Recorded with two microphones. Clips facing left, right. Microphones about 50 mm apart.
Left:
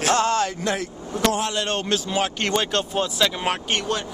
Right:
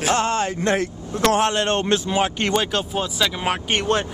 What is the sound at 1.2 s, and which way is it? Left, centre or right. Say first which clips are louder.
Speech: right 4 dB; right.